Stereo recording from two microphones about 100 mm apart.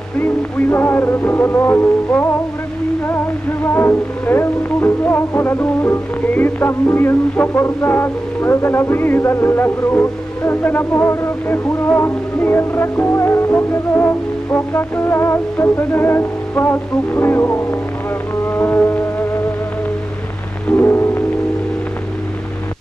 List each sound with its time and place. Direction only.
0.2 s music: 20° left (ahead or behind)
3.6 s music: 25° left (ahead or behind)
20.7 s music: 20° left (ahead or behind)